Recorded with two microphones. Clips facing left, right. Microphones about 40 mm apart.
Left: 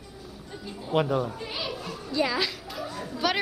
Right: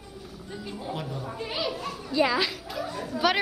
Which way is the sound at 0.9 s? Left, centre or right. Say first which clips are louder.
Left 11 dB; left.